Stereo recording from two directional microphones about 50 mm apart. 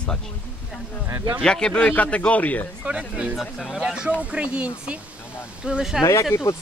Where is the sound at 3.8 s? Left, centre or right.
Centre.